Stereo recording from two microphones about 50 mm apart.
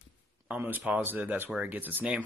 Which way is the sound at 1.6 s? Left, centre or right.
Right.